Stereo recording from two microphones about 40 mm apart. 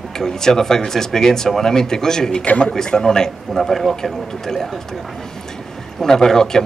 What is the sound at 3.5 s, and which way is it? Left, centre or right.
A man's voice, centre.